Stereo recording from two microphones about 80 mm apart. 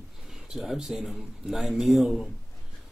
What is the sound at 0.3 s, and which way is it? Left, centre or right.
A man's voice, centre.